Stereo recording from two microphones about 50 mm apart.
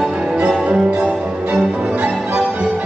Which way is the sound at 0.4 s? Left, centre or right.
Right.